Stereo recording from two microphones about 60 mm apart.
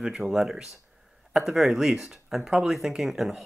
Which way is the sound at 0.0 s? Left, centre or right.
Centre.